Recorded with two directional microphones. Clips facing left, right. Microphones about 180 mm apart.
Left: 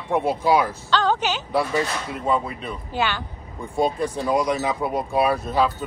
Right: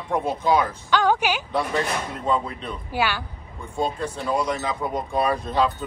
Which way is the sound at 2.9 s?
10° right (ahead or behind).